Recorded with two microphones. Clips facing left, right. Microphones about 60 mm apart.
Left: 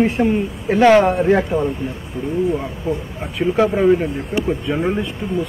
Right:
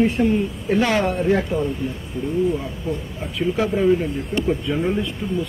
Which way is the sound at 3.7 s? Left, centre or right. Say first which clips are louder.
Left 3 dB; left.